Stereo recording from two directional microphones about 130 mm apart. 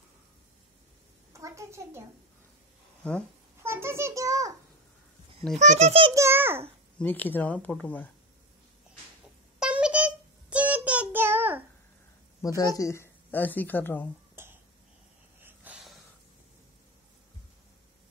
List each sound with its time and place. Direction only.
1.3 s a child's voice: 25° right (ahead or behind)
3.0 s speech: 10° left (ahead or behind)
3.6 s a sound: 20° right (ahead or behind)
5.6 s a child's voice: 60° right (ahead or behind)
6.1 s a child's voice: 20° right (ahead or behind)
7.0 s a woman's voice: 15° left (ahead or behind)
9.6 s child singing: 10° right (ahead or behind)
12.4 s a woman's voice: 25° left (ahead or behind)
14.3 s throat clearing: 20° right (ahead or behind)
15.4 s wheeze: 10° right (ahead or behind)